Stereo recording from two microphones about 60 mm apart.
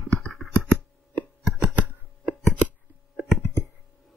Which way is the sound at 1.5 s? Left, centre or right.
Centre.